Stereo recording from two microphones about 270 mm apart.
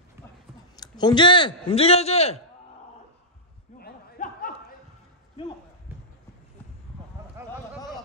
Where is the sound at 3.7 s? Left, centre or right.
Left.